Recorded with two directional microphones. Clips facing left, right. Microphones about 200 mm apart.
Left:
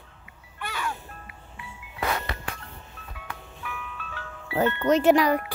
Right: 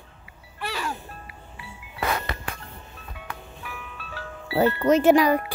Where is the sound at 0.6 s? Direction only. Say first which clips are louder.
Right 2 dB; 35° right (ahead or behind).